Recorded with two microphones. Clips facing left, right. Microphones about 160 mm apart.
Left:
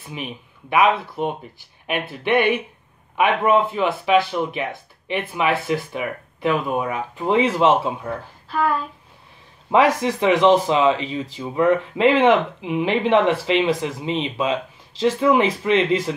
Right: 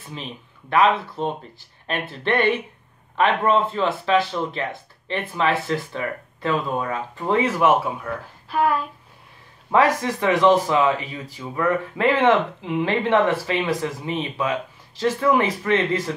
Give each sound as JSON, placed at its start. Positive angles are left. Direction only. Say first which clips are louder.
{"t": 0.1, "sound": "speech", "louder": "left 3 dB", "side_deg": 15}
{"t": 8.5, "sound": "speech", "louder": "right 1 dB", "side_deg": -5}
{"t": 9.7, "sound": "speech", "louder": "left 2 dB", "side_deg": 20}